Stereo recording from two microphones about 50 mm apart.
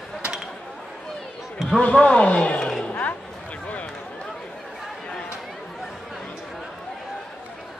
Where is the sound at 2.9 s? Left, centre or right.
Left.